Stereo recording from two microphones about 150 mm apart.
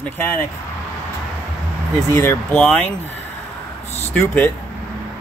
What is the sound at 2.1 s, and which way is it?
Speech, 15° left (ahead or behind).